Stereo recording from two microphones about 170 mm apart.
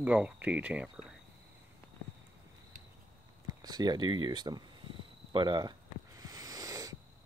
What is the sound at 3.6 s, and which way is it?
Speech, 25° right (ahead or behind).